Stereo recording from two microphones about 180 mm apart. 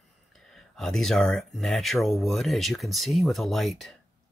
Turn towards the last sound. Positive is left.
turn(degrees=0)  # may be behind; listen again after turning